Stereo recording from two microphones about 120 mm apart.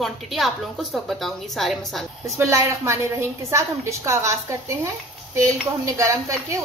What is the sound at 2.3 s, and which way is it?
A woman's voice, 25° right (ahead or behind).